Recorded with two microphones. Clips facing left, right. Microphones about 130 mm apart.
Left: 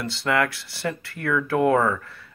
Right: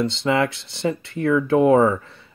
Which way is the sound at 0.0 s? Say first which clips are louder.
Right 4 dB; 20° right (ahead or behind).